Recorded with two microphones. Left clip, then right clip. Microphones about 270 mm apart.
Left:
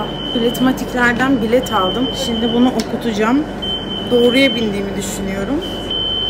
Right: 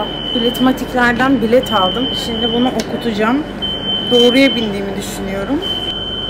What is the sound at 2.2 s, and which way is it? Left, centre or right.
Speech, centre.